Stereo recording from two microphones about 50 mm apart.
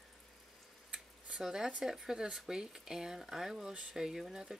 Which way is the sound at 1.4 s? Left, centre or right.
Centre.